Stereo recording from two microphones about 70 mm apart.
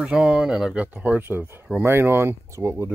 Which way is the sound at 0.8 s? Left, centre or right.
Right.